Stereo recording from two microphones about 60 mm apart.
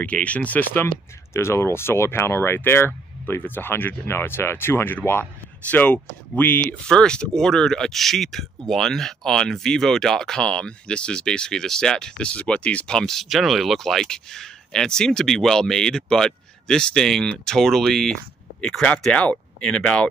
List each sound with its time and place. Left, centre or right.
0.0 s speech: left
1.3 s speech: left
6.9 s speech: centre
12.8 s speech: centre